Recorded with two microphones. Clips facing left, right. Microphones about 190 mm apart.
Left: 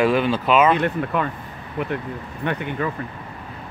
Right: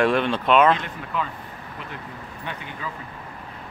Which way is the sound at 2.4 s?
60° left (ahead or behind).